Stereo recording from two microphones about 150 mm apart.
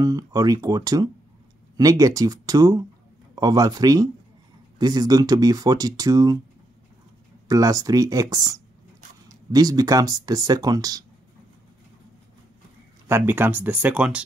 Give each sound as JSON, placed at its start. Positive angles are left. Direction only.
{"t": 0.0, "sound": "speech", "side_deg": -20}
{"t": 7.4, "sound": "speech", "side_deg": -25}
{"t": 13.0, "sound": "speech", "side_deg": -15}